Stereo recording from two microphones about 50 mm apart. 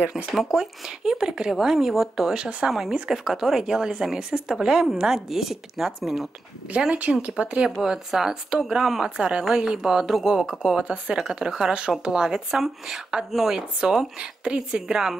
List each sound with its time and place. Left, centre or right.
0.3 s speech: centre
7.0 s speech: right
7.8 s speech: centre